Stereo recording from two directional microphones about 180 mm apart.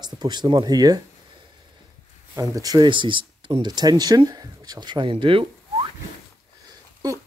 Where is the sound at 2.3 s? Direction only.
20° right (ahead or behind).